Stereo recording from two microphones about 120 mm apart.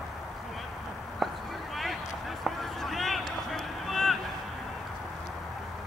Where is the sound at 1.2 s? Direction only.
Centre (ahead or behind).